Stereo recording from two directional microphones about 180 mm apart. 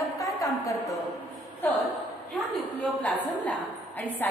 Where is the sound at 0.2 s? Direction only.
20° left (ahead or behind).